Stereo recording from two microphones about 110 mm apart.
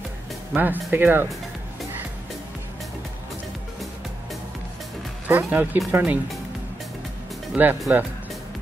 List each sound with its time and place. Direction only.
0.5 s speech: 15° right (ahead or behind)
5.3 s speech: 15° right (ahead or behind)
7.5 s speech: 15° right (ahead or behind)